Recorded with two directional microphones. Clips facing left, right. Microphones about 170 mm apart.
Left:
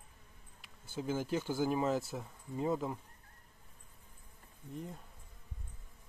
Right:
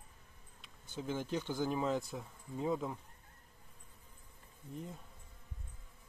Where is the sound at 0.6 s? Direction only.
5° left (ahead or behind).